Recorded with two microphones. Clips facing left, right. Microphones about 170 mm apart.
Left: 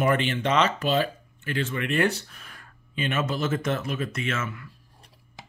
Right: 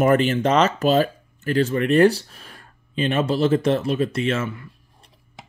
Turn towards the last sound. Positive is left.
turn(degrees=-30)  # may be behind; listen again after turning